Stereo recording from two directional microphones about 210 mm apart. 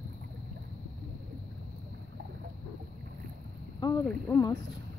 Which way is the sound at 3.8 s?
15° left (ahead or behind).